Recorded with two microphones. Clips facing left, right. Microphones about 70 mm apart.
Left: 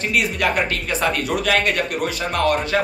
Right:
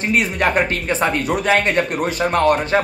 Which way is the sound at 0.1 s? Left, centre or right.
Right.